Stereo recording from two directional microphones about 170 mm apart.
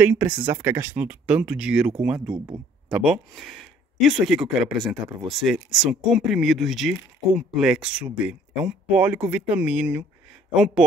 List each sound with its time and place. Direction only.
0.0 s speech: 10° right (ahead or behind)
2.3 s speech: 30° right (ahead or behind)
2.9 s speech: 5° right (ahead or behind)